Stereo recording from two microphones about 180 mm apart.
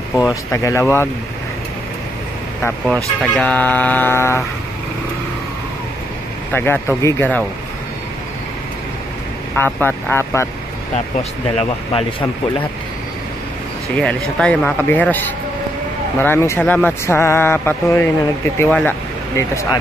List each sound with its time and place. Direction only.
0.1 s speech: 15° left (ahead or behind)
2.6 s speech: 5° left (ahead or behind)
6.5 s speech: 10° left (ahead or behind)
9.7 s speech: 10° left (ahead or behind)
11.5 s speech: 30° left (ahead or behind)
13.9 s speech: 5° left (ahead or behind)
16.2 s speech: 15° left (ahead or behind)